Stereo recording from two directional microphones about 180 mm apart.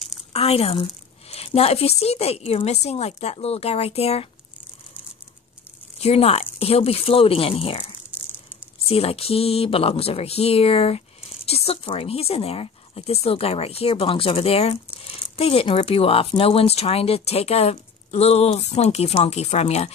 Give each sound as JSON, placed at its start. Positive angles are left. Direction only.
{"t": 0.3, "sound": "speech", "side_deg": 35}
{"t": 5.9, "sound": "speech", "side_deg": 35}